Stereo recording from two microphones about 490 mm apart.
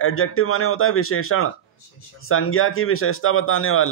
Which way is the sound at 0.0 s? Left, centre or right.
Left.